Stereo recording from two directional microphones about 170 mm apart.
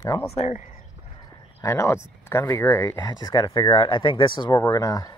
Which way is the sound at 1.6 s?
15° left (ahead or behind).